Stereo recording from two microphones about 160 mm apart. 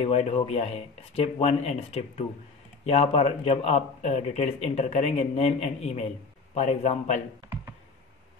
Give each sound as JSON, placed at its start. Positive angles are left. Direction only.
{"t": 0.0, "sound": "a man's voice", "side_deg": 40}